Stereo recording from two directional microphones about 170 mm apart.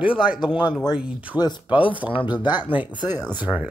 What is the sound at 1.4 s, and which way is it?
Speech, 25° left (ahead or behind).